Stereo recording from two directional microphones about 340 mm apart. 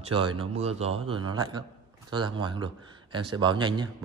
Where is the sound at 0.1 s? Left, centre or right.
Centre.